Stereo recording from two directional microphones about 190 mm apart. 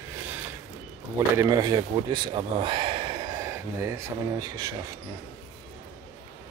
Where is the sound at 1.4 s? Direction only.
20° right (ahead or behind).